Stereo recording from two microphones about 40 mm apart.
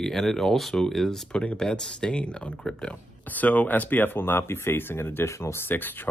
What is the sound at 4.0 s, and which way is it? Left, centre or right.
Speech, left.